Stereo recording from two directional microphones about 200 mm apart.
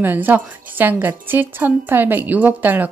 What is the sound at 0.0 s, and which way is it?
A woman's voice, 10° right (ahead or behind).